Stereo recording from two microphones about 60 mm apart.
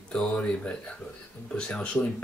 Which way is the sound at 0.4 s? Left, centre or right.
Left.